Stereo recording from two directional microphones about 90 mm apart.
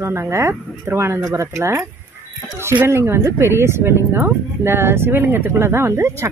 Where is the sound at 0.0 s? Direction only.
30° right (ahead or behind).